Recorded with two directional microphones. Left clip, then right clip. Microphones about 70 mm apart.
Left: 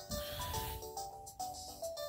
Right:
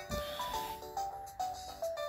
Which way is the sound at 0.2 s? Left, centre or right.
Right.